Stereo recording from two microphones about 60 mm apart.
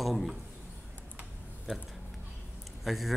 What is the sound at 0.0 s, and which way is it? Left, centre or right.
Speech, centre.